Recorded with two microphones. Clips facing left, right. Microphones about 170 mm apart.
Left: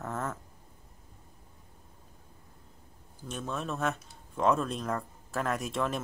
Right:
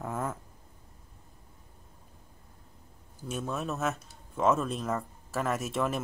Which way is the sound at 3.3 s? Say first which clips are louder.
Right 2 dB; 10° right (ahead or behind).